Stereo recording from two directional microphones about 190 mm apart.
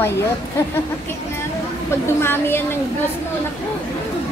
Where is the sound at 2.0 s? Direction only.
10° left (ahead or behind).